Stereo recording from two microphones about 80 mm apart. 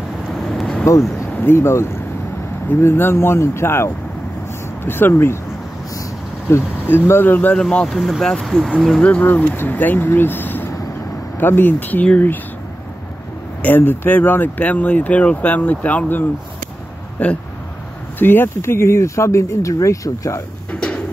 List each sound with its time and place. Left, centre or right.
0.3 s vehicle: centre
1.3 s speech: left
6.5 s speech: left
7.7 s speech: centre
8.0 s speech: centre
9.0 s speech: left
13.6 s speech: left
18.2 s speech: left